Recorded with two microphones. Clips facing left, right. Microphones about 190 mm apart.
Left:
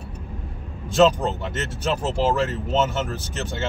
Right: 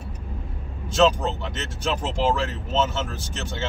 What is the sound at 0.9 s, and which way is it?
Speech, 10° left (ahead or behind).